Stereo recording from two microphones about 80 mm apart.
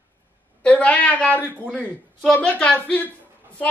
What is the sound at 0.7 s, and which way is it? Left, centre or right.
A woman's voice, centre.